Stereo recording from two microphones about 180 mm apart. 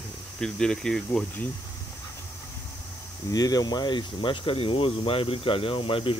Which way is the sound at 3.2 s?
20° left (ahead or behind).